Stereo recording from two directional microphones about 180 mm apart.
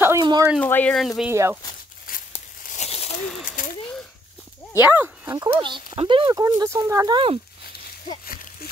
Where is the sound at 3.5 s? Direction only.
50° left (ahead or behind).